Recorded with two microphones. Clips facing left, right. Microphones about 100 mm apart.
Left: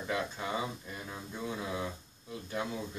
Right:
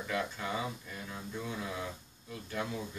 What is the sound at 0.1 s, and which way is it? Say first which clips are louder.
Speech: left 1 dB; 20° left (ahead or behind).